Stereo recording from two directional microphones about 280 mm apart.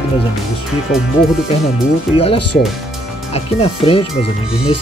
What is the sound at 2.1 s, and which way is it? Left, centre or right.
Speech, centre.